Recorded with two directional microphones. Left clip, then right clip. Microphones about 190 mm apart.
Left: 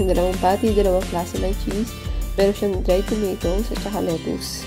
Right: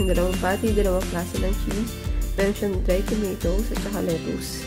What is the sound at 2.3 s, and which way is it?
Speech, 15° left (ahead or behind).